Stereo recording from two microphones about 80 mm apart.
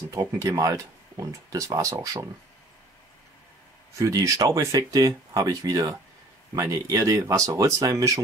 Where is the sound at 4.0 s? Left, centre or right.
Right.